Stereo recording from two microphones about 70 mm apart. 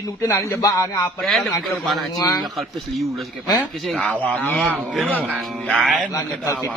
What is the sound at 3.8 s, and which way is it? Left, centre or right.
Speech, centre.